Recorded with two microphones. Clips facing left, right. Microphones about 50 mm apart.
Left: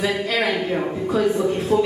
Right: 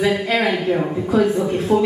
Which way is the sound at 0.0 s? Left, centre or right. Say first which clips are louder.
Right 3 dB; centre.